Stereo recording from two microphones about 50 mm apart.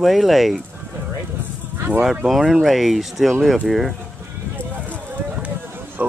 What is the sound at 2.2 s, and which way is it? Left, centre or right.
Speech, centre.